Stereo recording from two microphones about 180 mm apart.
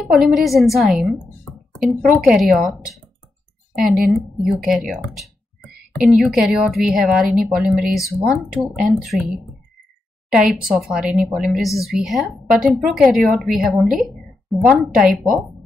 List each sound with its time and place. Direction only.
0.0 s speech: centre (ahead or behind)
4.4 s speech: centre (ahead or behind)
10.3 s speech: 5° right (ahead or behind)